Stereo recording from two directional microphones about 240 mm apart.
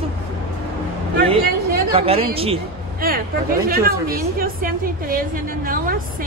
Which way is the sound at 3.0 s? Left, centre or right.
Right.